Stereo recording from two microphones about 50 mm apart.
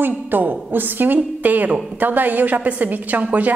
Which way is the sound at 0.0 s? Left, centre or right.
Right.